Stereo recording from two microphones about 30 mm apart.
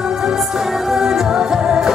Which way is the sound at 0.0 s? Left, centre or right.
Right.